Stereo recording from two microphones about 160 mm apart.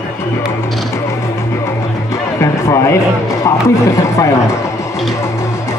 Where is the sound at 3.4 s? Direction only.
20° left (ahead or behind).